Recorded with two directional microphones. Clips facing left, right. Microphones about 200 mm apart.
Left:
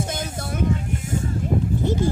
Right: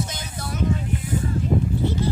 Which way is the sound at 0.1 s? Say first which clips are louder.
Left 4 dB; 50° left (ahead or behind).